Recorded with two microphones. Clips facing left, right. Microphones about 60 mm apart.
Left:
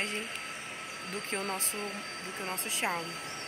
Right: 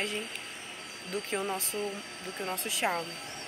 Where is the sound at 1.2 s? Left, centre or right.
Left.